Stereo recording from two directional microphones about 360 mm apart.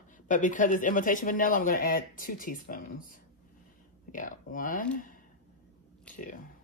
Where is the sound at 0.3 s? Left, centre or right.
Left.